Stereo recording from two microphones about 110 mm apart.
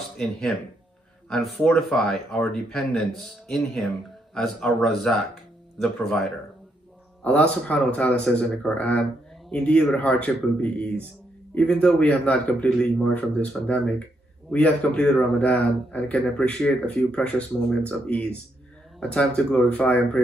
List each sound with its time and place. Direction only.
0.2 s speech: 5° left (ahead or behind)
7.2 s a man's voice: 10° left (ahead or behind)